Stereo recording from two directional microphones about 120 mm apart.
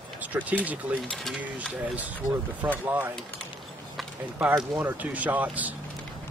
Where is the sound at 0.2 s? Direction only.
10° right (ahead or behind).